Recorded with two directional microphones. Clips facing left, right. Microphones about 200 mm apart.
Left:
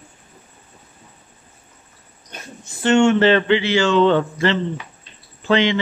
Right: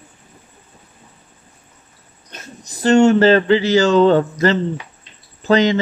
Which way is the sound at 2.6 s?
40° right (ahead or behind).